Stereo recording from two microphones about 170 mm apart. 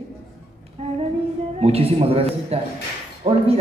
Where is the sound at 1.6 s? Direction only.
35° right (ahead or behind).